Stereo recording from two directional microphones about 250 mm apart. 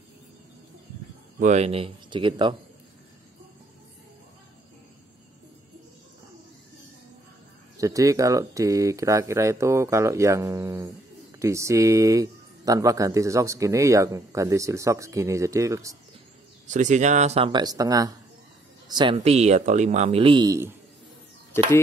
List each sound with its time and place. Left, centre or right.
1.4 s speech: right
7.7 s speech: centre
16.6 s speech: right; by 20.7 s centre